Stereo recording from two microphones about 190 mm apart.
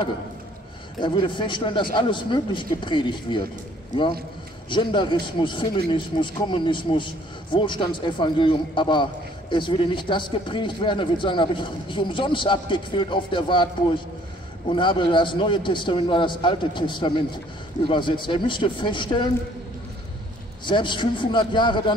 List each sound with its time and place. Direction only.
1.0 s speech: 25° left (ahead or behind)
4.6 s speech: 25° left (ahead or behind)
20.6 s speech: 25° left (ahead or behind)